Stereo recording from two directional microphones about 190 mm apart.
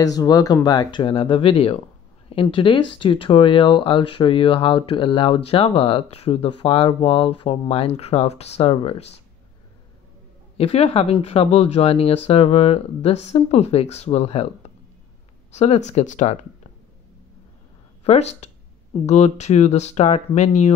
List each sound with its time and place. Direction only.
0.0 s speech: 20° left (ahead or behind)
10.6 s speech: 30° left (ahead or behind)
18.0 s speech: 35° left (ahead or behind)